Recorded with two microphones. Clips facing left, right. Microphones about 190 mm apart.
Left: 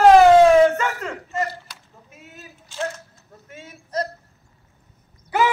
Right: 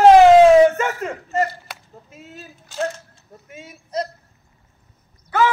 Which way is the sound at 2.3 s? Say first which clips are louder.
Right 4 dB; 45° right (ahead or behind).